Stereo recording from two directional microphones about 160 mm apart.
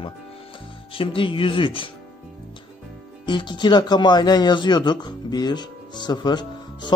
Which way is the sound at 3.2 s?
30° left (ahead or behind).